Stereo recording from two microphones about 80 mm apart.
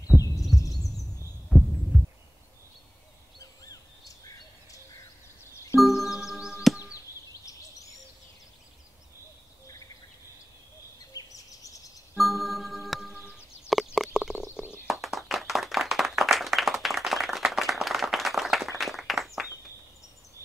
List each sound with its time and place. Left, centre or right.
0.1 s heart murmur: centre
0.5 s heart murmur: centre
1.5 s heart sounds: centre
3.3 s a sound: left
5.8 s music: centre
11.1 s bird vocalization: left
12.2 s music: centre
13.3 s a sound: centre
15.0 s clapping: centre
18.8 s a sound: centre